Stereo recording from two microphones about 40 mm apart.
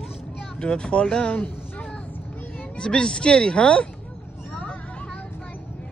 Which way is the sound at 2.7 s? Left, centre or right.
Left.